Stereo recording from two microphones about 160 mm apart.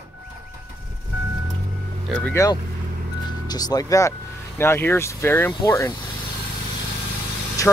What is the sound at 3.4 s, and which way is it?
Speech, 25° left (ahead or behind).